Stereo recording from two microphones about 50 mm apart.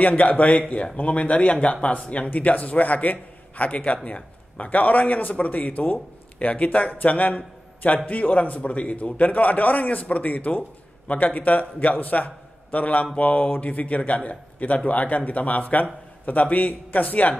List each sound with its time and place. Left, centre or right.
0.0 s a man's voice: left